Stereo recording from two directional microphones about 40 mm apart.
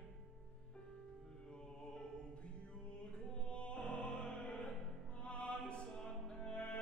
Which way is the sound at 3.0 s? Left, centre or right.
Left.